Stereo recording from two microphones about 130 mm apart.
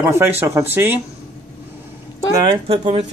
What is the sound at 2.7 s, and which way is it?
Speech, 55° right (ahead or behind).